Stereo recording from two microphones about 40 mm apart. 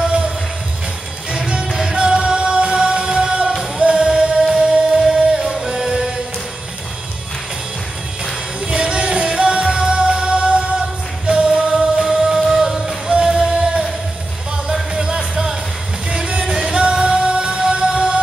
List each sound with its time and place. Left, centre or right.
0.0 s music: right
1.3 s music: centre
8.6 s music: right
13.1 s music: right